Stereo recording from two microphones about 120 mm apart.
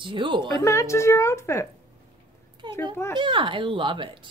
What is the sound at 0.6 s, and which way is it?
Speech, 25° left (ahead or behind).